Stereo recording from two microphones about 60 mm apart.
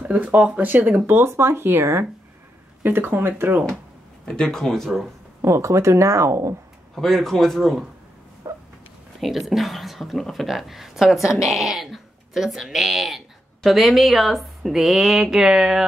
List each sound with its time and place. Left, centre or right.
0.0 s speech: right
2.8 s speech: right
4.3 s speech: centre
5.4 s speech: right
7.0 s speech: centre
8.5 s a sound: right
9.2 s speech: centre